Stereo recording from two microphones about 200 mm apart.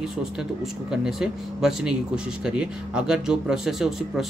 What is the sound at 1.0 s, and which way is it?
Speech, 5° right (ahead or behind).